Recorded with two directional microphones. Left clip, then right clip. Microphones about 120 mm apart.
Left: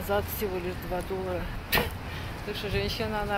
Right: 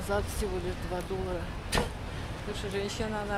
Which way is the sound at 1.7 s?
5° left (ahead or behind).